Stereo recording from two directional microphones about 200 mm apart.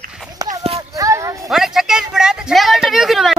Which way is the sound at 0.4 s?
15° right (ahead or behind).